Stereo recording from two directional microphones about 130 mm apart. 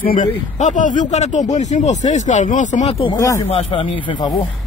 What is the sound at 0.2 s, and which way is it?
Speech, 70° left (ahead or behind).